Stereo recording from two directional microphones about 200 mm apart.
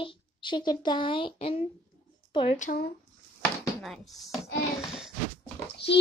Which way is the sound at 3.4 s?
Centre (ahead or behind).